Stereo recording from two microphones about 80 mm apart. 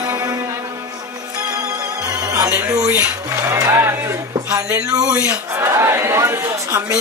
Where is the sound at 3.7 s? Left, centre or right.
Right.